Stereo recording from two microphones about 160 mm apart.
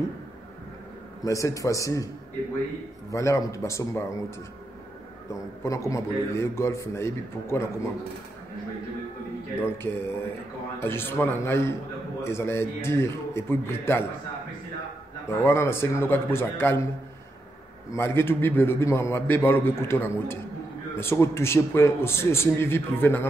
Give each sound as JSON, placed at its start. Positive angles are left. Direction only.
{"t": 1.2, "sound": "a man's voice", "side_deg": 20}
{"t": 3.1, "sound": "a man's voice", "side_deg": 20}
{"t": 5.3, "sound": "a man's voice", "side_deg": 20}
{"t": 9.6, "sound": "a man's voice", "side_deg": 15}
{"t": 15.2, "sound": "a man's voice", "side_deg": 15}
{"t": 17.9, "sound": "a man's voice", "side_deg": 15}